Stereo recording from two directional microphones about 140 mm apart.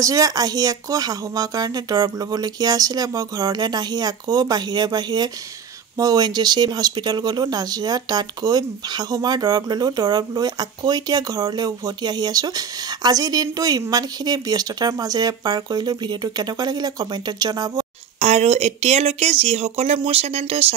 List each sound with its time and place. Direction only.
0.0 s speech: 25° right (ahead or behind)
18.2 s speech: 50° right (ahead or behind)